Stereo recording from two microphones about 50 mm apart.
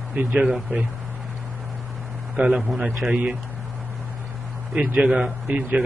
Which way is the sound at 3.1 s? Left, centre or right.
Right.